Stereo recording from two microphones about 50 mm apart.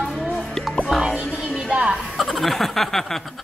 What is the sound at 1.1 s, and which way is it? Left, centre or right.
Music, right.